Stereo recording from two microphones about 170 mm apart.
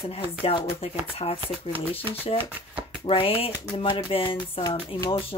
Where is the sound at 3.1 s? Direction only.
35° left (ahead or behind).